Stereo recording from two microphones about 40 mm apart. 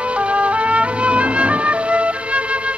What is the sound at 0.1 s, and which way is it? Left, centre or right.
Music, right.